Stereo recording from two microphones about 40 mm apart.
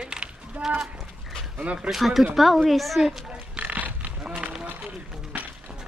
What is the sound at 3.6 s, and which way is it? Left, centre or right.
Livestock, right.